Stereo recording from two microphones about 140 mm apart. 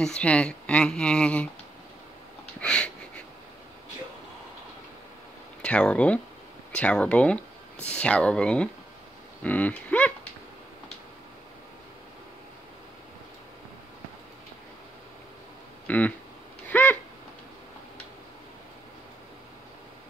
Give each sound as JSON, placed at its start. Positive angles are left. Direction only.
{"t": 0.0, "sound": "speech", "side_deg": 5}
{"t": 2.6, "sound": "speech", "side_deg": 5}
{"t": 5.6, "sound": "speech", "side_deg": 10}
{"t": 15.9, "sound": "speech", "side_deg": 10}
{"t": 16.6, "sound": "a sound", "side_deg": 15}